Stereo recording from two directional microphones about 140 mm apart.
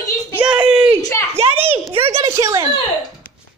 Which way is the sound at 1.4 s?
45° right (ahead or behind).